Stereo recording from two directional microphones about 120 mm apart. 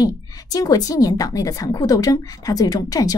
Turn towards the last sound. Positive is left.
turn(degrees=30)  # may be behind; listen again after turning